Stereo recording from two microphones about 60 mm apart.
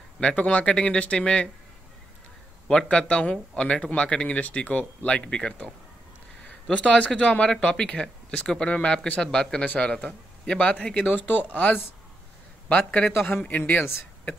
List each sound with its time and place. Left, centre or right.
0.2 s speech: centre
2.9 s speech: centre
6.7 s speech: centre